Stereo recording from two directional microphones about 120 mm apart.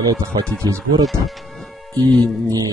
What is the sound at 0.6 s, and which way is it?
Speech, 25° right (ahead or behind).